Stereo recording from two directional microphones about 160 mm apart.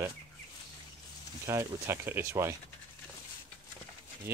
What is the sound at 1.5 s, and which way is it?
Speech, 15° right (ahead or behind).